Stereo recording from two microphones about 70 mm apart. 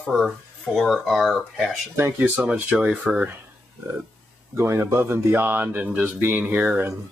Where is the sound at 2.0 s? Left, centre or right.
Right.